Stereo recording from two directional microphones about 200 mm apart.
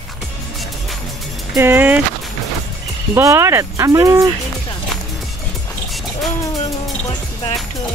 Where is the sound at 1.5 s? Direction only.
10° right (ahead or behind).